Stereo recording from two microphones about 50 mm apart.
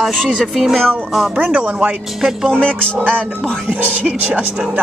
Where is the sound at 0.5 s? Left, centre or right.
Centre.